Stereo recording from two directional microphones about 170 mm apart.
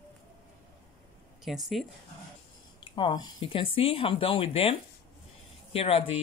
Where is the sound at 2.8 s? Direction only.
25° left (ahead or behind).